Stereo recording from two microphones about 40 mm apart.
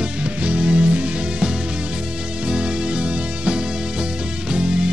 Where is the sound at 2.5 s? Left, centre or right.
Right.